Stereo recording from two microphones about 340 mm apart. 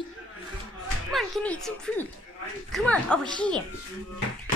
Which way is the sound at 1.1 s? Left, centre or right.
Centre.